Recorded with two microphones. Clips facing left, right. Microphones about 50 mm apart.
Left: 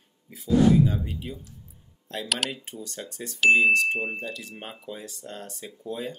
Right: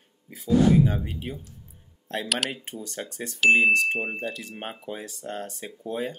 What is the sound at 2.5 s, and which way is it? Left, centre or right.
Speech, right.